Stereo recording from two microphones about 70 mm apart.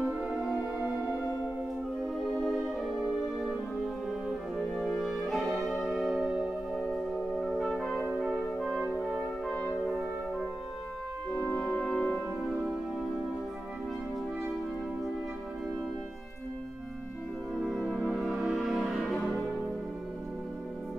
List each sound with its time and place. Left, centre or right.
0.0 s music: right
2.3 s music: centre
4.6 s music: centre
6.8 s music: centre
8.2 s french horn: centre
9.5 s brass instrument: centre
11.4 s music: centre
17.6 s music: centre